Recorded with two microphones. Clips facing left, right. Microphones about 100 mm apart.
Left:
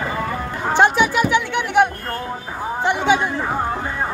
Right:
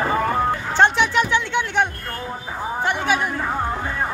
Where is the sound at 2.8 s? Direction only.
20° left (ahead or behind).